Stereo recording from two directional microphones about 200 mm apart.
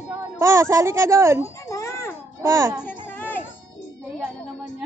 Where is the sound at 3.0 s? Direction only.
10° left (ahead or behind).